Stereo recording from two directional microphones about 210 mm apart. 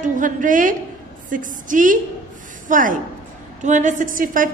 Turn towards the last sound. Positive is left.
turn(degrees=-40)  # may be behind; listen again after turning